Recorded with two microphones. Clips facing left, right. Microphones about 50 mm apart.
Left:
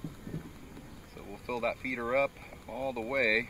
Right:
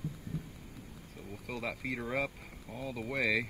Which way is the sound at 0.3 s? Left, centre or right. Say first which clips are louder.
Left 1 dB; left.